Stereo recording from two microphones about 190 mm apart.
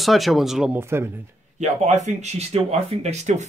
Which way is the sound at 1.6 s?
40° right (ahead or behind).